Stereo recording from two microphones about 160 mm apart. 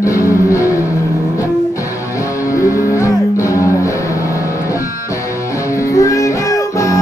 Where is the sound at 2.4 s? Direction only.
20° left (ahead or behind).